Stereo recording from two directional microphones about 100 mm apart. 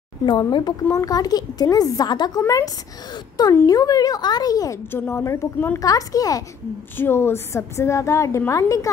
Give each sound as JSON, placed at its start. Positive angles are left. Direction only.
{"t": 0.2, "sound": "a woman's voice", "side_deg": 50}
{"t": 0.8, "sound": "a woman's voice", "side_deg": 35}
{"t": 4.9, "sound": "a woman's voice", "side_deg": 25}
{"t": 7.0, "sound": "a woman's voice", "side_deg": 25}